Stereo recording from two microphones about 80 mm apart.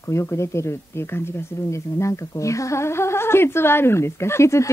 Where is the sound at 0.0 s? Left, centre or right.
Left.